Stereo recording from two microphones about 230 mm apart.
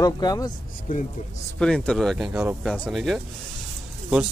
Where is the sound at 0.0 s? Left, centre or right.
Centre.